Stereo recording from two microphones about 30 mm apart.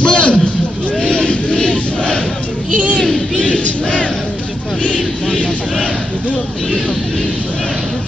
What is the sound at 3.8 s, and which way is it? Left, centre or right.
Battle cry, left.